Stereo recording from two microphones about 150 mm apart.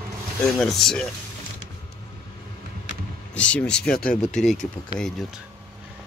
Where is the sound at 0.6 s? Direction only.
Centre (ahead or behind).